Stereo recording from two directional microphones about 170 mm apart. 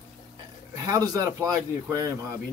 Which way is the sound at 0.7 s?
20° right (ahead or behind).